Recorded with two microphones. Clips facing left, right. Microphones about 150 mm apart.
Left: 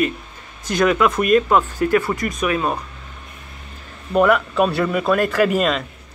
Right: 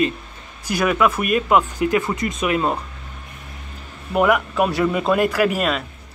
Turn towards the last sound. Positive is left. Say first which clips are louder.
# left 2 dB
turn(degrees=-5)  # may be behind; listen again after turning